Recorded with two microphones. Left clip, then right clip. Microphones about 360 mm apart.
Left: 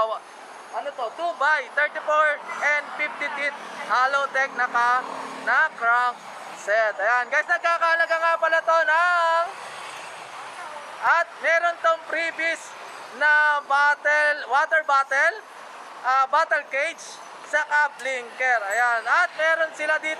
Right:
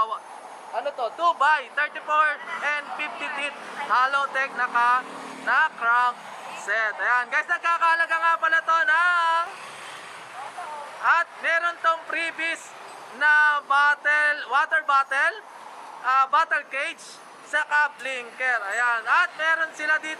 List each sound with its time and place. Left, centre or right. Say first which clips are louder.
1.2 s speech: right 2 dB; centre
11.1 s speech: left 1 dB; centre